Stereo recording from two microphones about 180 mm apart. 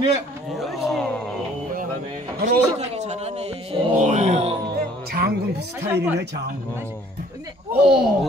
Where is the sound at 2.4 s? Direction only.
40° right (ahead or behind).